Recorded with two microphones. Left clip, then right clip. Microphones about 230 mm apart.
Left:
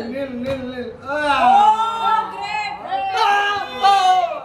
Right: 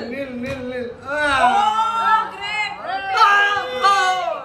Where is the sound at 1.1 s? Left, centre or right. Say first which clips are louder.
Even; right.